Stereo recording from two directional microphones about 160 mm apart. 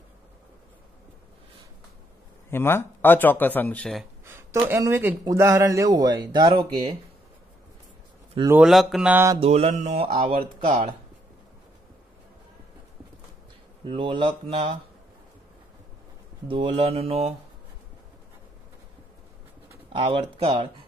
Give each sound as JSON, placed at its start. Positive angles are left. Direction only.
{"t": 2.5, "sound": "speech", "side_deg": 15}
{"t": 4.6, "sound": "speech", "side_deg": -15}
{"t": 8.6, "sound": "speech", "side_deg": 0}
{"t": 9.1, "sound": "mantra", "side_deg": -15}
{"t": 9.4, "sound": "speech", "side_deg": -40}
{"t": 13.8, "sound": "speech", "side_deg": -30}
{"t": 16.4, "sound": "speech", "side_deg": -35}
{"t": 19.9, "sound": "speech", "side_deg": -35}